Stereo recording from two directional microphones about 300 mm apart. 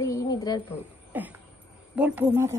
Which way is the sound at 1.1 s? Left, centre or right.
Centre.